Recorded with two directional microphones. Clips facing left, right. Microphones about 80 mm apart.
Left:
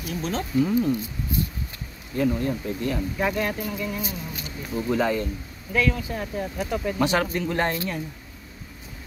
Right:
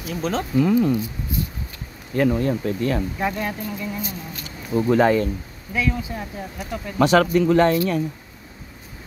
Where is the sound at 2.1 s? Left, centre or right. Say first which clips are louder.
Right 4 dB; right.